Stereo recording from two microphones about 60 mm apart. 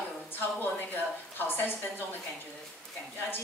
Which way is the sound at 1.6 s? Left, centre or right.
Left.